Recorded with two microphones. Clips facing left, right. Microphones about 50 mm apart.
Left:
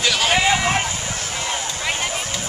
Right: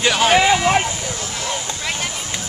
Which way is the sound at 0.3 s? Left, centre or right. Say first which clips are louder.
Right 4 dB; centre.